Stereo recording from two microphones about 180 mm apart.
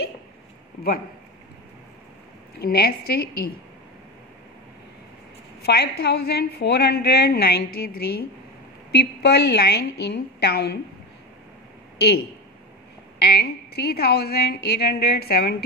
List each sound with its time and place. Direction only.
2.6 s a woman's voice: 60° left (ahead or behind)
5.6 s a woman's voice: 60° left (ahead or behind)
12.0 s a woman's voice: 65° left (ahead or behind)